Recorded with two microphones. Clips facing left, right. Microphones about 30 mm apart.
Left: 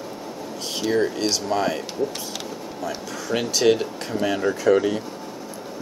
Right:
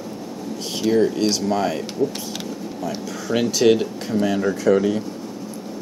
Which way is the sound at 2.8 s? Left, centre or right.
Centre.